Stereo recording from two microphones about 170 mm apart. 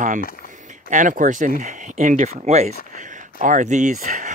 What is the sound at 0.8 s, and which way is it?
Speech, 50° right (ahead or behind).